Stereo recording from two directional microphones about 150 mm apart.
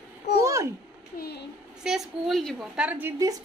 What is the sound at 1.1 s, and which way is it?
Speech, 90° left.